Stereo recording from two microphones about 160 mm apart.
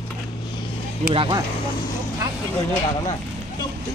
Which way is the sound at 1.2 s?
30° right (ahead or behind).